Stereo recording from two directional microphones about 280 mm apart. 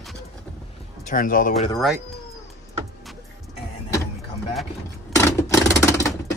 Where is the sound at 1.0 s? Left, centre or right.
Left.